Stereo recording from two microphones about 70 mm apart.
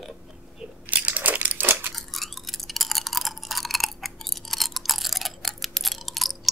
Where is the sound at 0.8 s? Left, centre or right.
Right.